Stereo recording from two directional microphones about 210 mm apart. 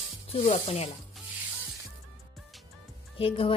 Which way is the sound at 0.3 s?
30° left (ahead or behind).